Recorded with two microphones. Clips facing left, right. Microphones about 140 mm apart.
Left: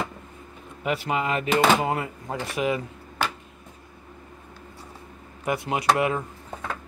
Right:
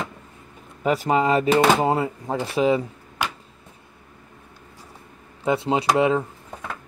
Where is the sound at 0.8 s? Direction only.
40° right (ahead or behind).